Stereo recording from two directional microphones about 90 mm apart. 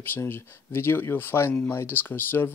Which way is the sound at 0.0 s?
25° left (ahead or behind).